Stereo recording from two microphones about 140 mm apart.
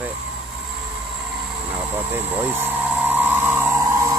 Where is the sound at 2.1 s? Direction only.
15° right (ahead or behind).